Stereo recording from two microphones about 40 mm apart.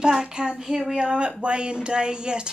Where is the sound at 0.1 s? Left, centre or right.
Centre.